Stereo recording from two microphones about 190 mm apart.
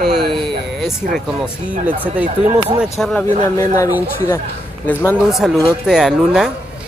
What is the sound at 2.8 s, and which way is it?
Speech, centre (ahead or behind).